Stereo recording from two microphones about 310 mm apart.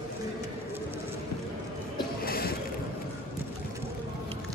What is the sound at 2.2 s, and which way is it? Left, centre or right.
Music, left.